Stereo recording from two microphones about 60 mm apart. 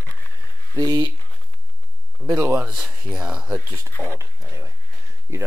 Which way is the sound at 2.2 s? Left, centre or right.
Right.